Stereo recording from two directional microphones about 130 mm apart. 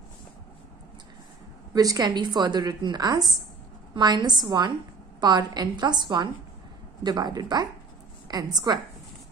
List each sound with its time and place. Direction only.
1.7 s a woman's voice: 30° right (ahead or behind)